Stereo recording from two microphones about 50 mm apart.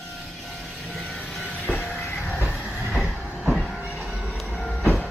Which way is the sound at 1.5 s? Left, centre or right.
Left.